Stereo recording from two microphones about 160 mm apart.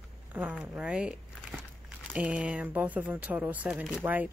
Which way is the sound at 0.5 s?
5° right (ahead or behind).